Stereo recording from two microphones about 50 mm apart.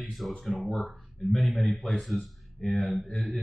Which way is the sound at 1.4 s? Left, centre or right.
Centre.